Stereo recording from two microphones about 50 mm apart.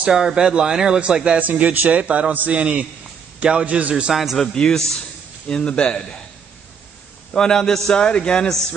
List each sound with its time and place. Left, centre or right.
0.0 s speech: centre
1.4 s a man's voice: right
3.6 s a man's voice: right
4.1 s a man's voice: centre
4.4 s a man's voice: centre
7.3 s a man's voice: centre